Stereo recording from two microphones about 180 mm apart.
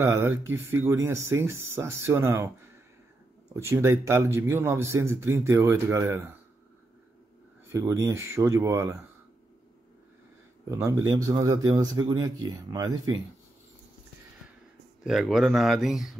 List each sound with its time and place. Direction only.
0.0 s a man's voice: 15° right (ahead or behind)
3.5 s a man's voice: 15° right (ahead or behind)
7.7 s a man's voice: 15° right (ahead or behind)
10.6 s a man's voice: 15° right (ahead or behind)
15.0 s speech: centre (ahead or behind)